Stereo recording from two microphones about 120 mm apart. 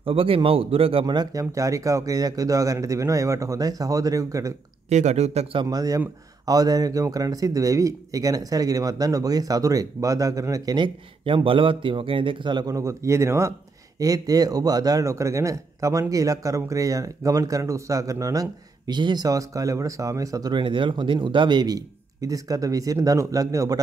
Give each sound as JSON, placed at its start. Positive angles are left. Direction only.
{"t": 0.0, "sound": "a man's voice", "side_deg": -50}
{"t": 1.0, "sound": "speech", "side_deg": -35}
{"t": 4.8, "sound": "speech", "side_deg": -70}
{"t": 5.6, "sound": "speech", "side_deg": -30}
{"t": 11.2, "sound": "a man's voice", "side_deg": -45}